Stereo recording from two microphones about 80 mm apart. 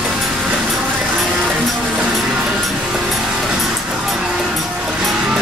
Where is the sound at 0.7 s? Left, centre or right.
Centre.